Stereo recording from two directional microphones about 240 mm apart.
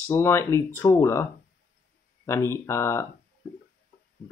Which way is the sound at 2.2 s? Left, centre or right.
Centre.